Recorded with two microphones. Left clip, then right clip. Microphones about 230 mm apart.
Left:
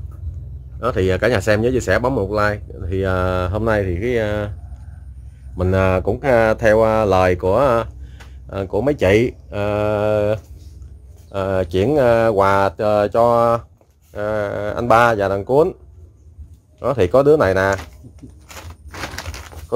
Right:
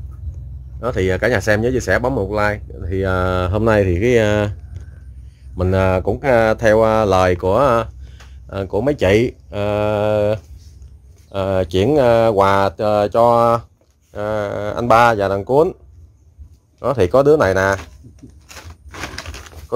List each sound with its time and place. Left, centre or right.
0.7 s speech: centre; by 4.6 s right
5.6 s speech: centre
16.8 s speech: centre
18.5 s a sound: centre